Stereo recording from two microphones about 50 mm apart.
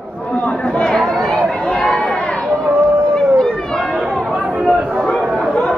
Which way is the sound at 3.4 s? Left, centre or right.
Centre.